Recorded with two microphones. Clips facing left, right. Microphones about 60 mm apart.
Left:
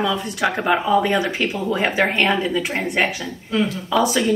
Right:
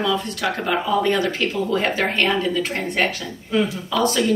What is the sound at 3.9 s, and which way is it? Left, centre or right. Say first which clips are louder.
Speech: left 2 dB; centre.